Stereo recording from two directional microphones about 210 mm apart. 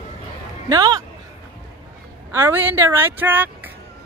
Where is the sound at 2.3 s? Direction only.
10° right (ahead or behind).